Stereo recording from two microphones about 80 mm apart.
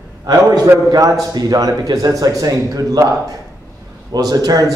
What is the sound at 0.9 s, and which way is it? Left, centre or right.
A man's voice, right.